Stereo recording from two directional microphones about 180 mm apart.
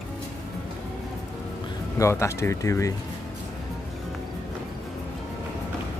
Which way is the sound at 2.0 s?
15° left (ahead or behind).